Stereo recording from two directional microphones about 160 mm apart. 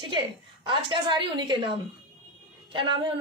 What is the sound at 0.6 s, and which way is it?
A woman's voice, 30° right (ahead or behind).